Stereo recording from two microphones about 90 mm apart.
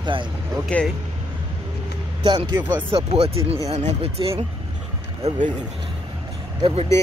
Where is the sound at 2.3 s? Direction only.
65° right (ahead or behind).